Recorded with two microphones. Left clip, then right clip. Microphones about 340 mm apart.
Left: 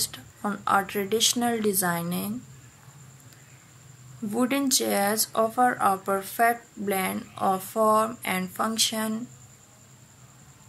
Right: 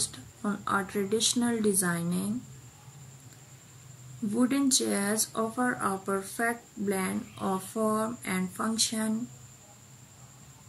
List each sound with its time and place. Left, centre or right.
0.0 s speech: centre
4.4 s speech: centre